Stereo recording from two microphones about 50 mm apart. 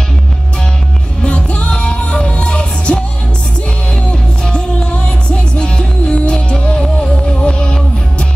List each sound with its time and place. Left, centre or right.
1.2 s music: left
4.1 s music: centre